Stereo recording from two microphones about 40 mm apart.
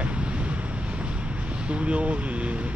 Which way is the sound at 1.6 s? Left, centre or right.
Right.